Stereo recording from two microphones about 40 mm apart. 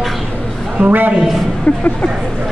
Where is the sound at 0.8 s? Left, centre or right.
Right.